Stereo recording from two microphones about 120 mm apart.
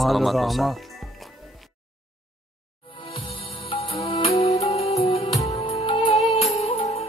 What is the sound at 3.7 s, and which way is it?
Music, 50° left (ahead or behind).